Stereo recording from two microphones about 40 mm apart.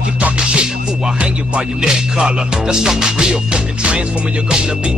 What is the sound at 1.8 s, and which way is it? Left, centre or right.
Music, centre.